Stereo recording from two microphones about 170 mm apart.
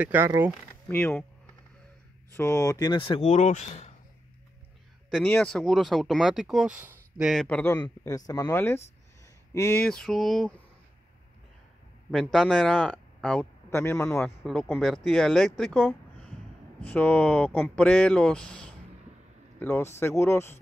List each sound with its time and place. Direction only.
0.0 s speech: 10° right (ahead or behind)
0.7 s speech: 10° left (ahead or behind)
2.3 s speech: 15° left (ahead or behind)
3.3 s speech: 40° left (ahead or behind)
5.2 s speech: 10° left (ahead or behind)
7.4 s speech: 10° left (ahead or behind)
12.1 s speech: centre (ahead or behind); by 14.3 s 15° left (ahead or behind)
14.4 s speech: centre (ahead or behind)